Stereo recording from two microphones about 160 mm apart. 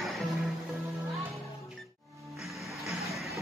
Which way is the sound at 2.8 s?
Centre (ahead or behind).